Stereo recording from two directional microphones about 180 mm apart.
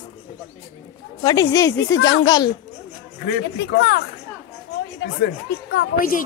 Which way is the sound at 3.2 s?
60° left (ahead or behind).